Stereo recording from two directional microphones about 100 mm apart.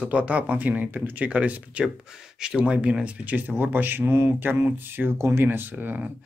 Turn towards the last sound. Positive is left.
turn(degrees=-15)  # may be behind; listen again after turning